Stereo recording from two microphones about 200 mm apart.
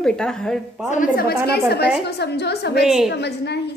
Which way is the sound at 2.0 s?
55° left (ahead or behind).